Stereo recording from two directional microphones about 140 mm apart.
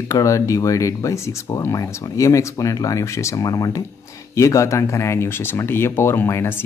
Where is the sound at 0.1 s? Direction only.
20° left (ahead or behind).